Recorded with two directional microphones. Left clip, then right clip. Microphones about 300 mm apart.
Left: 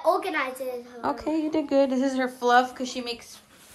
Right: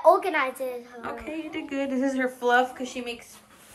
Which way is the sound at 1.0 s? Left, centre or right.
Centre.